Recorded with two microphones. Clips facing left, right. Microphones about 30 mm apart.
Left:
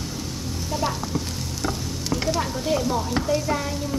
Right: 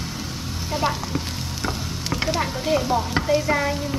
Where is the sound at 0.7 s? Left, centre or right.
Right.